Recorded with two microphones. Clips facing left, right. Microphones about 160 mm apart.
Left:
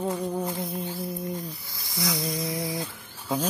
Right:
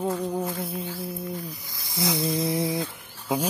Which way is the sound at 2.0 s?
25° right (ahead or behind).